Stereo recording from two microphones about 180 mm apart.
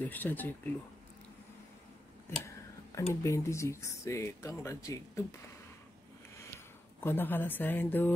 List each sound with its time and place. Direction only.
0.0 s speech: 10° left (ahead or behind)
2.4 s speech: 15° left (ahead or behind)
7.0 s speech: 10° left (ahead or behind)